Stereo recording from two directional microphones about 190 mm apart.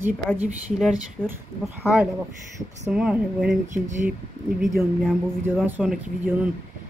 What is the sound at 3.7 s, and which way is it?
Speech, 40° right (ahead or behind).